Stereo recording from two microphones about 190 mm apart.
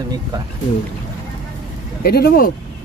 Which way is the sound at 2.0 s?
55° left (ahead or behind).